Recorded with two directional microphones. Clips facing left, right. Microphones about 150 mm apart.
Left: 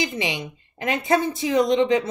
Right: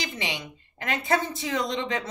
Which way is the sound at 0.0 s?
15° left (ahead or behind).